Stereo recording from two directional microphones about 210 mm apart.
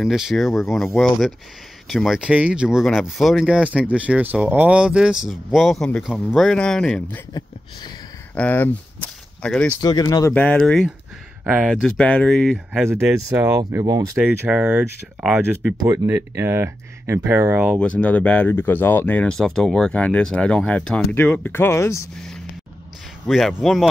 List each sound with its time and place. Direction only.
0.0 s speech: centre (ahead or behind)
8.4 s speech: 5° left (ahead or behind)
9.8 s speech: 15° left (ahead or behind)
11.4 s speech: 5° right (ahead or behind)
11.7 s speech: 5° left (ahead or behind)
12.8 s speech: 10° right (ahead or behind)
14.1 s speech: 5° right (ahead or behind)
15.8 s speech: 15° right (ahead or behind)
17.6 s speech: 5° left (ahead or behind)
23.2 s speech: centre (ahead or behind)